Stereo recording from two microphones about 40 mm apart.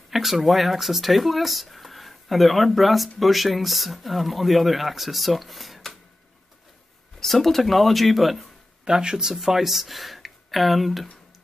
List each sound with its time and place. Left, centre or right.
0.1 s speech: centre
7.2 s speech: centre
8.8 s speech: centre
9.3 s speech: centre